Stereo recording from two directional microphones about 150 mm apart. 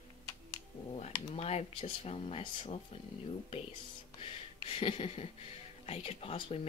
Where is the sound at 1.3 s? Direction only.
45° left (ahead or behind).